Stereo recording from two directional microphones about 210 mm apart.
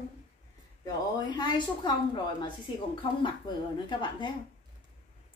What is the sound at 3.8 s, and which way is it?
Speech, 20° left (ahead or behind).